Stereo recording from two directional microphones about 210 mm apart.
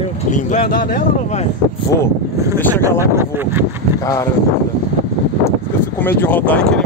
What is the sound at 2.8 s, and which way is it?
Speech, 10° right (ahead or behind).